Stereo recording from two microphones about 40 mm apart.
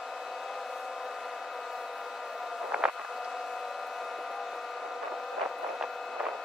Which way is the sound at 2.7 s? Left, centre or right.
Right.